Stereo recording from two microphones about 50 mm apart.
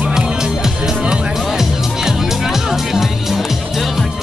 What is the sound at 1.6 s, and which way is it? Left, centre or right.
Music, centre.